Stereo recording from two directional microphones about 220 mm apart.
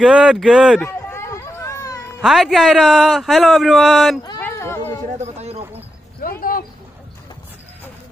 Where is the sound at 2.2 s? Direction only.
Centre (ahead or behind).